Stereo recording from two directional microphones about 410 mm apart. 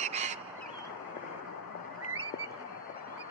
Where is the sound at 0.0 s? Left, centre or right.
Centre.